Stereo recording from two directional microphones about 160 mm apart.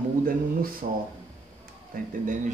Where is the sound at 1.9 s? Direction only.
65° right (ahead or behind).